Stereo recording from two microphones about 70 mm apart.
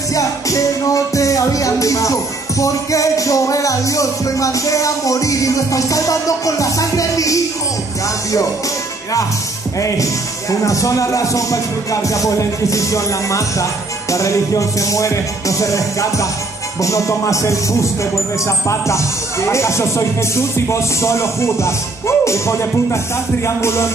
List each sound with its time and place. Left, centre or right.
0.1 s music: left
9.8 s speech: left
23.4 s music: left